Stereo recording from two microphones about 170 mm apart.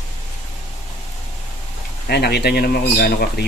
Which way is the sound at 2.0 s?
70° left (ahead or behind).